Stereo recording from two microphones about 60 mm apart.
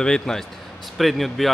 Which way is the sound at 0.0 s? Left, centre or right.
Centre.